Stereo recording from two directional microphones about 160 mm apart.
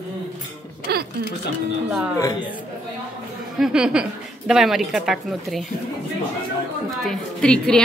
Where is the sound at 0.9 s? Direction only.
80° right.